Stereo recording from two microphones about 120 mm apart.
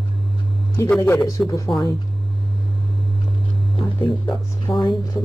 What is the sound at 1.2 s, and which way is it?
Speech, 30° left (ahead or behind).